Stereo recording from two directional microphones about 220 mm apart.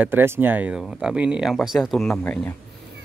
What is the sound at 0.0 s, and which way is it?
Speech, 10° right (ahead or behind).